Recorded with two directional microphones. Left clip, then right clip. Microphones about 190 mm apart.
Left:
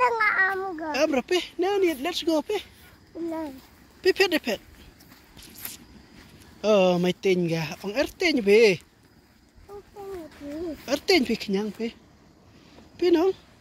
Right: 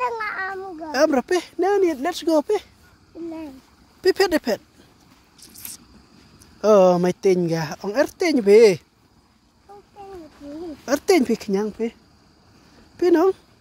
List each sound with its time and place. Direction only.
0.0 s babbling: 20° left (ahead or behind)
0.9 s speech: 45° right (ahead or behind)
4.0 s speech: 45° right (ahead or behind)
6.6 s speech: 45° right (ahead or behind)
10.9 s speech: 45° right (ahead or behind)
12.9 s speech: 45° right (ahead or behind)